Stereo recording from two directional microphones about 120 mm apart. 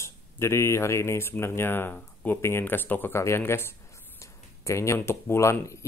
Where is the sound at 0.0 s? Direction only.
25° left (ahead or behind).